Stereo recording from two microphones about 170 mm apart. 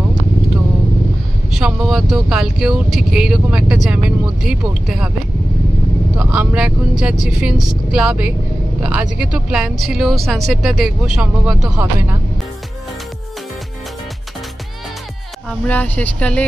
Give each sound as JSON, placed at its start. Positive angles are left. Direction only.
{"t": 1.5, "sound": "speech", "side_deg": -5}
{"t": 6.1, "sound": "speech", "side_deg": -5}
{"t": 15.6, "sound": "speech", "side_deg": 10}